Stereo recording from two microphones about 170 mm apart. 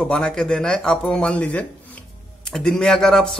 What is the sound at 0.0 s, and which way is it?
A man's voice, 5° left (ahead or behind).